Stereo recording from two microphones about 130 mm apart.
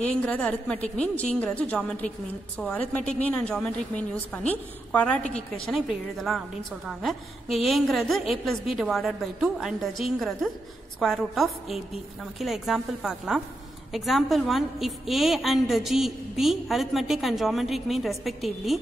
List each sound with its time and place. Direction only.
0.0 s a woman's voice: 10° left (ahead or behind)